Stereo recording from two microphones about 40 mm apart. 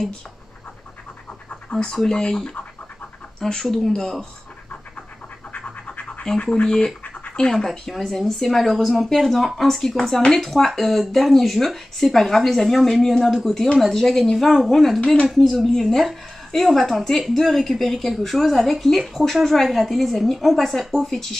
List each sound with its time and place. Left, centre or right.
1.5 s pant: left
2.0 s a woman's voice: centre
5.6 s scratch: left
6.2 s speech: left
7.5 s a woman's voice: centre